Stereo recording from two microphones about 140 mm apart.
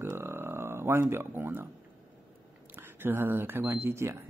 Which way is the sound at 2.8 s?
15° right (ahead or behind).